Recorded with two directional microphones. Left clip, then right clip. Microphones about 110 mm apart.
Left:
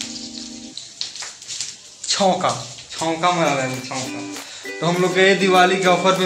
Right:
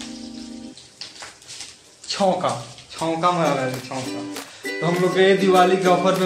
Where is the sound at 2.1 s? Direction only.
10° left (ahead or behind).